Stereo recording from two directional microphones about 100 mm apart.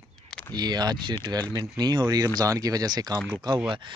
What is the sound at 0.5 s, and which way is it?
Speech, 45° right (ahead or behind).